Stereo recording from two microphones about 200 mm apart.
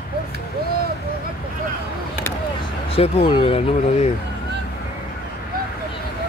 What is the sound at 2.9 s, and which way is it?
Speech, 30° left (ahead or behind).